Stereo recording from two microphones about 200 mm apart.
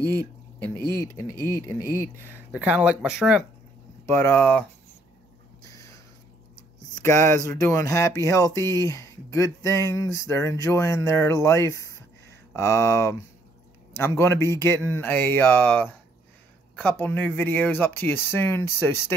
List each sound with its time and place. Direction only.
0.0 s speech: 15° right (ahead or behind)
1.1 s speech: 10° left (ahead or behind)
2.2 s speech: 5° right (ahead or behind)
4.1 s speech: 10° left (ahead or behind)
5.6 s a sound: 15° left (ahead or behind)
7.0 s speech: 15° left (ahead or behind)